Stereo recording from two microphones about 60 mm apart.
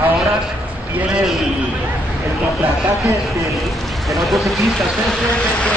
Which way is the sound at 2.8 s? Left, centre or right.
Right.